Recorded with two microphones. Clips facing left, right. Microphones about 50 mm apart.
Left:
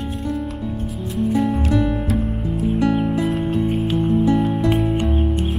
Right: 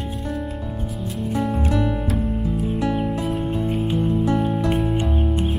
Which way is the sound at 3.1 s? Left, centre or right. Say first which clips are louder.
Left 3 dB; left.